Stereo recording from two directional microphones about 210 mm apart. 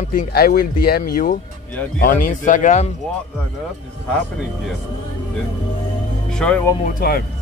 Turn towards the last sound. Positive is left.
turn(degrees=45)  # may be behind; listen again after turning